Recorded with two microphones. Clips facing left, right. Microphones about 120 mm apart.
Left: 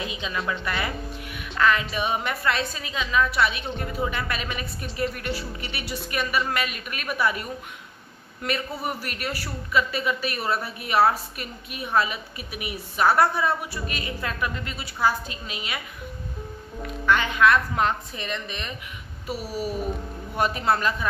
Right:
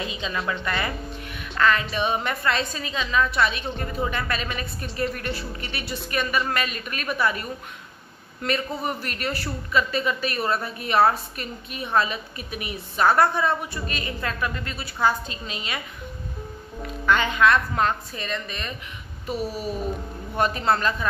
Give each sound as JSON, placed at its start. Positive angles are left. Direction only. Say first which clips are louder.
{"t": 0.0, "sound": "a man's voice", "louder": "right 1 dB", "side_deg": 5}
{"t": 16.8, "sound": "speech", "louder": "right 1 dB", "side_deg": 0}
{"t": 17.7, "sound": "a man's voice", "louder": "right 1 dB", "side_deg": 15}